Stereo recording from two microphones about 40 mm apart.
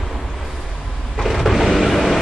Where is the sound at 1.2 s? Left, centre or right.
Centre.